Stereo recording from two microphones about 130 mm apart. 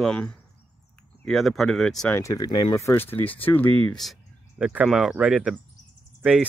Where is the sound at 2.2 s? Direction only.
25° left (ahead or behind).